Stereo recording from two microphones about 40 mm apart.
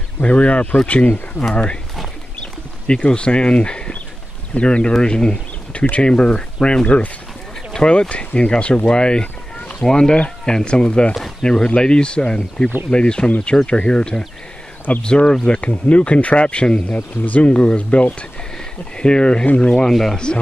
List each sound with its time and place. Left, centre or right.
0.2 s speech: left
1.5 s speech: left
2.4 s a sound: left
4.6 s speech: left
8.8 s boat: left
9.8 s speech: centre
16.9 s speech: left
19.9 s speech: centre